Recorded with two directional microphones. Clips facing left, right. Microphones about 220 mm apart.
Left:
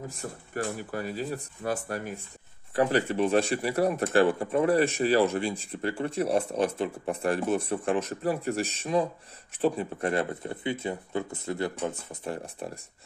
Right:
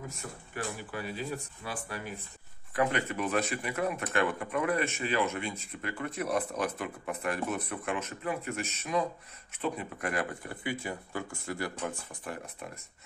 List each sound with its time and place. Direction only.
0.2 s speech: 35° left (ahead or behind)
2.7 s speech: 35° left (ahead or behind)